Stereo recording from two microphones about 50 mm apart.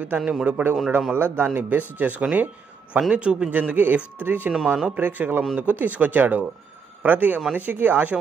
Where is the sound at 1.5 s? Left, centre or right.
Right.